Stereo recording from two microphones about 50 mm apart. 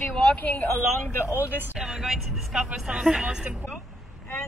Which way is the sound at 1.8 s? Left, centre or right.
Centre.